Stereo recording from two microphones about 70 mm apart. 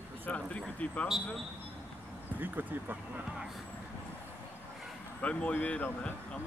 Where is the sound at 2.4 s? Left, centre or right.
Right.